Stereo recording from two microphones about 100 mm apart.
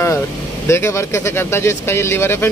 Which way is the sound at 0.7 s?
25° left (ahead or behind).